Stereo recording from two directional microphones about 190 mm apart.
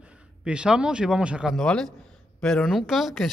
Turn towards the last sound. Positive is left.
turn(degrees=0)  # may be behind; listen again after turning